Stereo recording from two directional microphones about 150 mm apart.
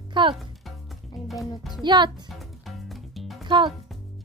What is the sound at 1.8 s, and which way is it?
Speech, 30° right (ahead or behind).